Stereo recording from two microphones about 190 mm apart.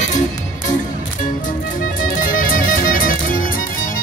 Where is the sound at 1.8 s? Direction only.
45° left (ahead or behind).